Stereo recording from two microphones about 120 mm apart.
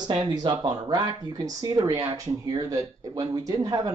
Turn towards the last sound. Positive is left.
turn(degrees=-30)  # may be behind; listen again after turning